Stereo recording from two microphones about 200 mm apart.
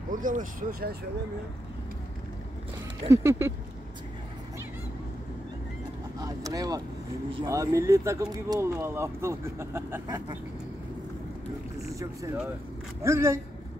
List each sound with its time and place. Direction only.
0.1 s speech: 40° right (ahead or behind)
3.1 s speech: 15° right (ahead or behind)
6.1 s speech: 15° right (ahead or behind)
11.8 s speech: 15° right (ahead or behind)